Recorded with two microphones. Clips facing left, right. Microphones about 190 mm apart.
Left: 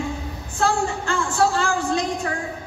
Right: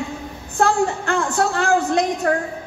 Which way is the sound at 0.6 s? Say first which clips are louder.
Right 4 dB; 60° right (ahead or behind).